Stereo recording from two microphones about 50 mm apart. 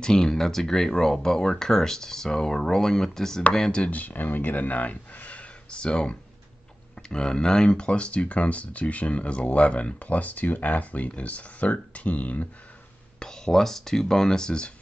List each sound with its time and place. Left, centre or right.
0.0 s speech: centre
3.9 s speech: left
13.2 s speech: centre